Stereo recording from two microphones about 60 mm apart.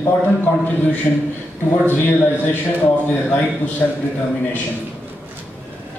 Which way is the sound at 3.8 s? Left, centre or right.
Left.